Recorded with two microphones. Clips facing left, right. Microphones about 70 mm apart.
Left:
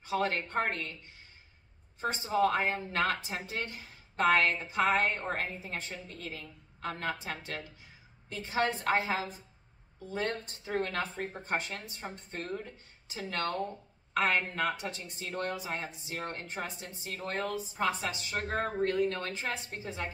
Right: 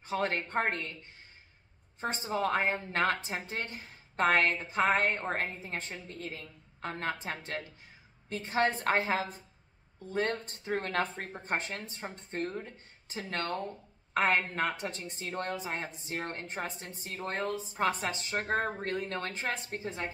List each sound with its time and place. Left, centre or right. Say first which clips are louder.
0.0 s a woman's voice: left 1 dB; right
2.0 s a woman's voice: left 3 dB; right